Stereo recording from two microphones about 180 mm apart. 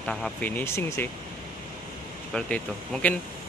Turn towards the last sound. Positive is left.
turn(degrees=5)  # may be behind; listen again after turning